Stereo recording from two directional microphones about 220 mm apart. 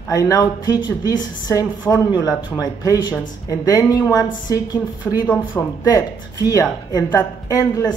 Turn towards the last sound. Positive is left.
turn(degrees=15)  # may be behind; listen again after turning